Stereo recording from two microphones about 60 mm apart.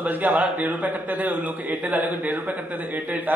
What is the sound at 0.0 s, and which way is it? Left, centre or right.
A man's voice, right.